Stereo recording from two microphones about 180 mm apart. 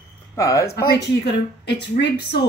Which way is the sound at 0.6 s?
60° left (ahead or behind).